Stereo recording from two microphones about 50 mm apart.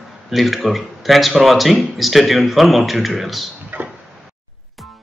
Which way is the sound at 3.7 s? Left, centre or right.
Right.